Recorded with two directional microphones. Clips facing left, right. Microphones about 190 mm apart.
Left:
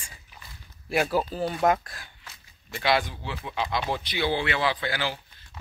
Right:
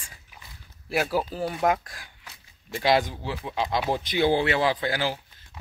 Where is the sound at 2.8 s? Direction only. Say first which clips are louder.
Right 3 dB; 40° right (ahead or behind).